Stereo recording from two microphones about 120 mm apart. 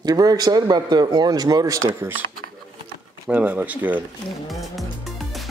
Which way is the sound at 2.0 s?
15° right (ahead or behind).